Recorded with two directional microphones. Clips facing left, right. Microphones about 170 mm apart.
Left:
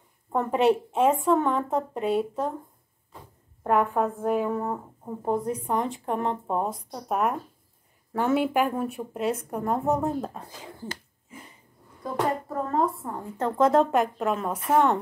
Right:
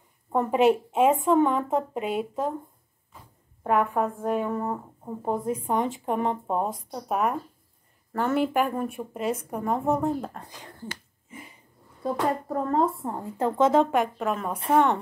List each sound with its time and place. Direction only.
0.3 s a woman's voice: 5° right (ahead or behind)
3.6 s a woman's voice: 5° right (ahead or behind)
12.0 s speech: 30° right (ahead or behind)
13.4 s a woman's voice: centre (ahead or behind)